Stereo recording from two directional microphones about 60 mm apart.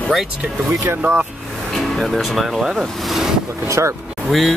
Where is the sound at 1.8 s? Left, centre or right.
Centre.